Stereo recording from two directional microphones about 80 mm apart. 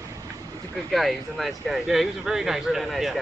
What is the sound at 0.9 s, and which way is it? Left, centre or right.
Speech, centre.